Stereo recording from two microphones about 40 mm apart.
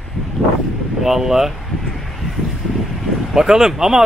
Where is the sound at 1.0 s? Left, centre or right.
Centre.